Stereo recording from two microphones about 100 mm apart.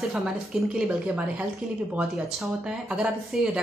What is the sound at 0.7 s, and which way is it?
Speech, 10° right (ahead or behind).